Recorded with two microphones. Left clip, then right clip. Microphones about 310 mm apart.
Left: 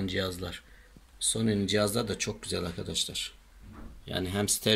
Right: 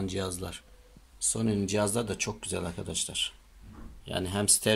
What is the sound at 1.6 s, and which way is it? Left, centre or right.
Speech, centre.